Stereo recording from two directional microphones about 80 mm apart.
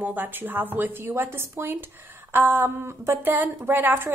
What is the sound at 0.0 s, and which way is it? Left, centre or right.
A woman's voice, right.